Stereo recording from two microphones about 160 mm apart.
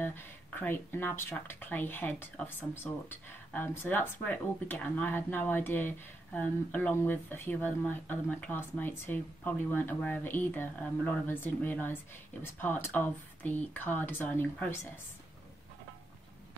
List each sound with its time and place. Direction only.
0.0 s speech: 15° left (ahead or behind)